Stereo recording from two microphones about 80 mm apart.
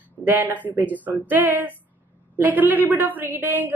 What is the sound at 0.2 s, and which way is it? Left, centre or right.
A woman's voice, right.